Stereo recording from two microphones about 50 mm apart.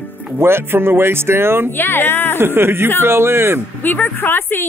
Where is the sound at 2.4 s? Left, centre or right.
Right.